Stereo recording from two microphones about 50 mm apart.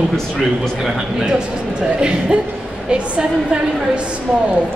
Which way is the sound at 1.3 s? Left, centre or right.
Centre.